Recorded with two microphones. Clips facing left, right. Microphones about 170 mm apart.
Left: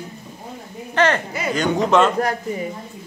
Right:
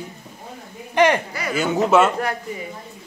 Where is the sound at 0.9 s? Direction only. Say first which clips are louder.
Right 2 dB; 15° right (ahead or behind).